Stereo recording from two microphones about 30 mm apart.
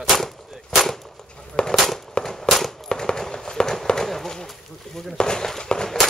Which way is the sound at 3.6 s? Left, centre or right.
Centre.